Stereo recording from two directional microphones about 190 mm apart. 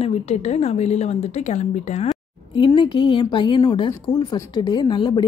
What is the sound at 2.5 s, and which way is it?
Speech, 25° left (ahead or behind).